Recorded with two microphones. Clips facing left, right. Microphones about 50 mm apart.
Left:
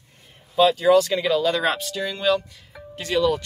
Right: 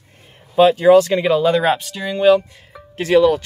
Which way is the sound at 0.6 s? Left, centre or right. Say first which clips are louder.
Right 6 dB; right.